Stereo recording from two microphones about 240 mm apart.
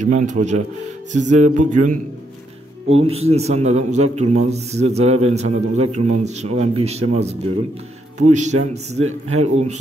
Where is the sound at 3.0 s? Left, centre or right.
Right.